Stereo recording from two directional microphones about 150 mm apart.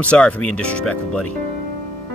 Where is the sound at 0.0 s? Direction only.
10° left (ahead or behind).